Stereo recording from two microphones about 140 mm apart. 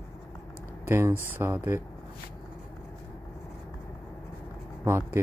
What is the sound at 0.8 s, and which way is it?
Speech, 20° right (ahead or behind).